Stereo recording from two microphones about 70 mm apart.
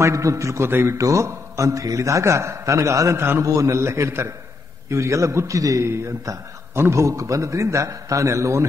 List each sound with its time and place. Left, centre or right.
0.0 s a man's voice: right
0.7 s speech: right
0.9 s a man's voice: right
5.9 s a man's voice: right